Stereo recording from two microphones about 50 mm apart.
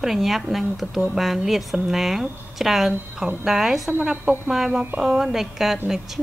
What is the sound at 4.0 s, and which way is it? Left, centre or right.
Speech, centre.